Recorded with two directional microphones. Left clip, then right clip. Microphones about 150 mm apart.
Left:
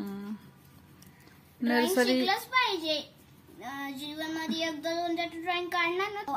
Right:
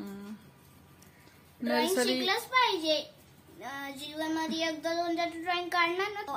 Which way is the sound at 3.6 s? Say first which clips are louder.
Left 1 dB; 20° right (ahead or behind).